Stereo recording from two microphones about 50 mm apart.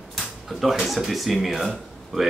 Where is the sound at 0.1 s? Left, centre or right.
Centre.